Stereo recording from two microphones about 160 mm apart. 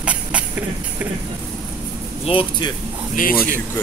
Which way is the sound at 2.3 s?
30° left (ahead or behind).